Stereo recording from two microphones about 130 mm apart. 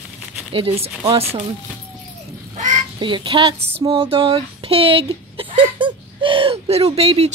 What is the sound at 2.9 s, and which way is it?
Speech, 40° right (ahead or behind).